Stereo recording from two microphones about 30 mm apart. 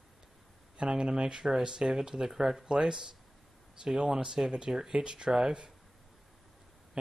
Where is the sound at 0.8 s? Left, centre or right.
Right.